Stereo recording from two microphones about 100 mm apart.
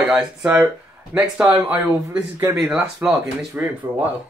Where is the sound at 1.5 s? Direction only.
25° right (ahead or behind).